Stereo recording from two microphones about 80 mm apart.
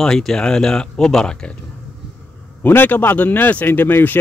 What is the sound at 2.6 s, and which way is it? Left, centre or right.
Speech, left.